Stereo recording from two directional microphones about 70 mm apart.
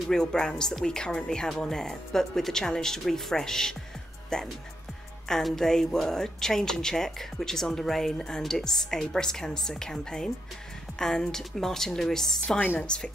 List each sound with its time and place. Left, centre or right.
0.1 s speech: centre
12.5 s speech: left
12.8 s speech: centre